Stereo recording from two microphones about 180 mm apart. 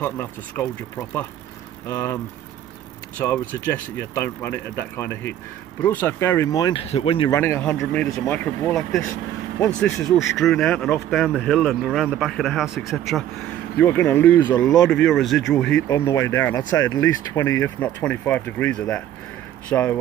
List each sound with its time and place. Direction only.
0.0 s speech: 10° left (ahead or behind)
1.9 s speech: 15° left (ahead or behind)
3.2 s speech: 10° left (ahead or behind)
6.9 s speech: 35° left (ahead or behind)
7.2 s speech: 15° left (ahead or behind)
10.3 s speech: 5° left (ahead or behind)
15.9 s speech: 15° left (ahead or behind)